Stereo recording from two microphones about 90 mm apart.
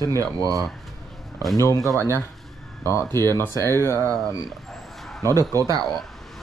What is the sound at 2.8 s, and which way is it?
Speech, 30° left (ahead or behind).